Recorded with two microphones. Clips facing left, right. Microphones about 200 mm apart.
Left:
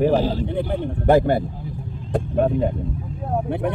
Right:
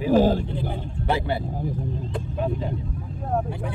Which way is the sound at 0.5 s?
50° left (ahead or behind).